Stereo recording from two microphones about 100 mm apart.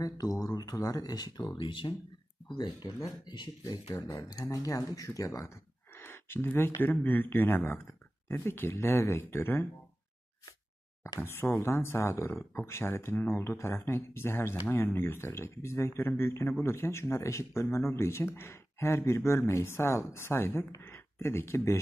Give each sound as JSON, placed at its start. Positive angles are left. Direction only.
{"t": 0.0, "sound": "speech", "side_deg": 35}
{"t": 11.1, "sound": "speech", "side_deg": 25}
{"t": 20.8, "sound": "a sound", "side_deg": 25}